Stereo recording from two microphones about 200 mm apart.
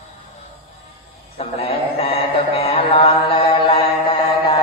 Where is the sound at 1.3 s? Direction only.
30° left (ahead or behind).